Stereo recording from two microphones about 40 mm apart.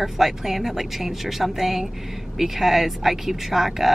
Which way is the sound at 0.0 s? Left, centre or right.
Centre.